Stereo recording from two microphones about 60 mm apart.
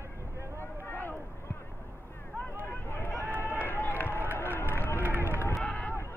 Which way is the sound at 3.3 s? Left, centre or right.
Left.